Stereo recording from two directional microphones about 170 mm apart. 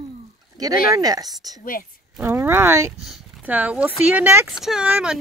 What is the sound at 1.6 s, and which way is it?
Speech, 55° left (ahead or behind).